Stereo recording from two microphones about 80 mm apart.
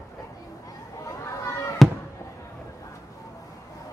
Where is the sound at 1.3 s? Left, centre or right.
Left.